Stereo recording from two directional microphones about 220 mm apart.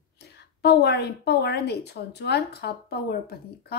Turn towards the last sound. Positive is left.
turn(degrees=45)  # may be behind; listen again after turning